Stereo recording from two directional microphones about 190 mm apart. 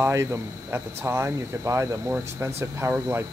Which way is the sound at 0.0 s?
15° right (ahead or behind).